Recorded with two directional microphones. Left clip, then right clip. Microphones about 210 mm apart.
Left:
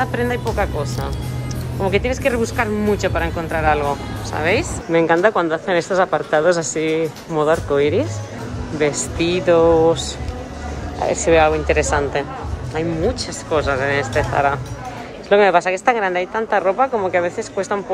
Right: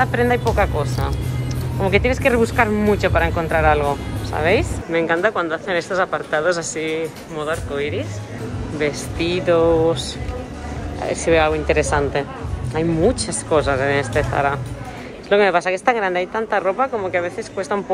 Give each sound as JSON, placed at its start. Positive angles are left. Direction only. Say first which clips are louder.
{"t": 0.0, "sound": "speech", "louder": "right 3 dB", "side_deg": 10}
{"t": 4.9, "sound": "speech", "louder": "left 3 dB", "side_deg": 15}
{"t": 8.7, "sound": "speech", "louder": "left 3 dB", "side_deg": 15}